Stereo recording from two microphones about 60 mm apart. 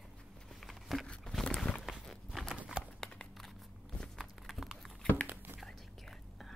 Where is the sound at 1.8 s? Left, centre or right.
Centre.